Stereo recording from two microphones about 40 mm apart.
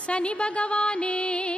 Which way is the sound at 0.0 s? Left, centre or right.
Left.